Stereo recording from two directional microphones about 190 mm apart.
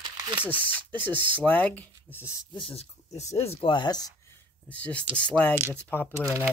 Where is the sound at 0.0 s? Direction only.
25° right (ahead or behind).